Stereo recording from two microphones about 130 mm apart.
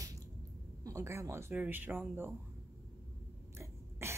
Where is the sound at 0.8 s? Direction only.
25° right (ahead or behind).